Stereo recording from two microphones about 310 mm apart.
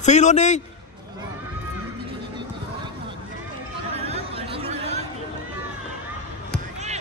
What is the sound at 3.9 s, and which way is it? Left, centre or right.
Chatter, centre.